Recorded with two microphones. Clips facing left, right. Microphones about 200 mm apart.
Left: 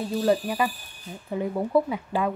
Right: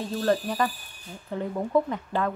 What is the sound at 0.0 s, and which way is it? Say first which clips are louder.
Speech: left 2 dB; 15° left (ahead or behind).